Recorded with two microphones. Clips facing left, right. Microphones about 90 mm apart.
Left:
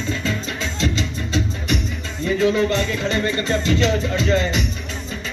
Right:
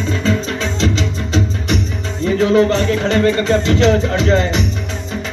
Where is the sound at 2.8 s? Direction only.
65° right (ahead or behind).